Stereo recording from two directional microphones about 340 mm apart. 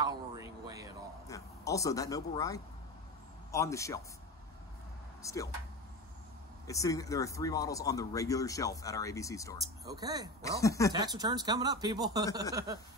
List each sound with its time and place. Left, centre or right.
0.0 s a sound: centre
1.2 s speech: centre
5.2 s speech: centre
6.7 s speech: centre
9.8 s speech: centre
10.4 s speech: centre
10.9 s speech: centre